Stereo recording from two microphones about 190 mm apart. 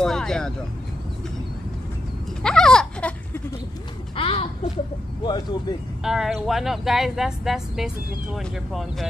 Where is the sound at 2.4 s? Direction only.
5° left (ahead or behind).